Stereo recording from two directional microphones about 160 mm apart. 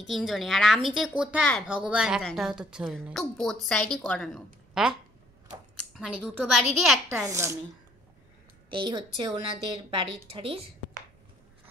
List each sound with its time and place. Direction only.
0.0 s a woman's voice: centre (ahead or behind)
5.9 s a woman's voice: centre (ahead or behind)
7.1 s a child's voice: 15° right (ahead or behind)
8.6 s a woman's voice: 30° right (ahead or behind)